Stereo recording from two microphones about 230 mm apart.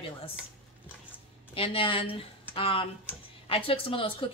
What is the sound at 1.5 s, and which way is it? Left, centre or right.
A woman's voice, left.